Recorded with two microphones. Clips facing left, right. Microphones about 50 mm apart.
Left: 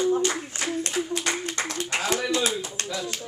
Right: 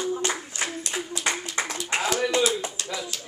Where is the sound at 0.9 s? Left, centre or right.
Centre.